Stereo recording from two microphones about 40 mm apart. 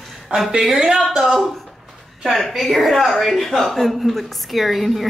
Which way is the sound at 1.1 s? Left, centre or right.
Centre.